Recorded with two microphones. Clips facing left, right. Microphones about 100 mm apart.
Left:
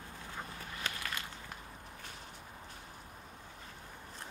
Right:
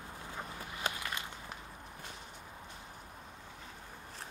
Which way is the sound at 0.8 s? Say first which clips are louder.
Right 3 dB; 20° right (ahead or behind).